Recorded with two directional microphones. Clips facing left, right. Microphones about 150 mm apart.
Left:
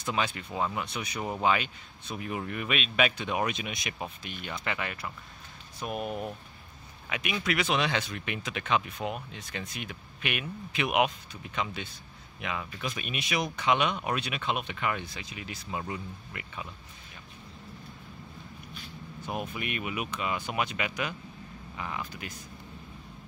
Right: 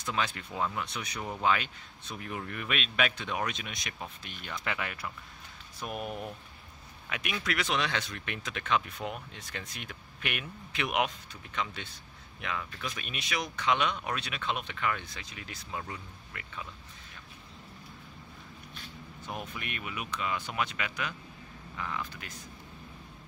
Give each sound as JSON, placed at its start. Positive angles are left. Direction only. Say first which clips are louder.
{"t": 0.0, "sound": "speech", "louder": "left 2 dB", "side_deg": 10}
{"t": 19.2, "sound": "speech", "louder": "left 5 dB", "side_deg": 10}